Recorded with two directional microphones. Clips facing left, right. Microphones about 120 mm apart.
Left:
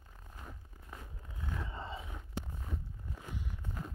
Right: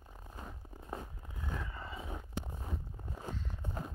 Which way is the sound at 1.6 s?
25° left (ahead or behind).